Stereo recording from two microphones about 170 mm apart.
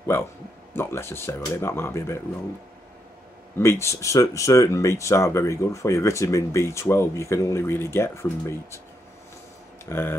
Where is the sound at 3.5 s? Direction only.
15° left (ahead or behind).